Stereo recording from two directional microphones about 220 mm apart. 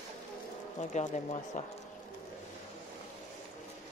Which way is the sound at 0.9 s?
35° left (ahead or behind).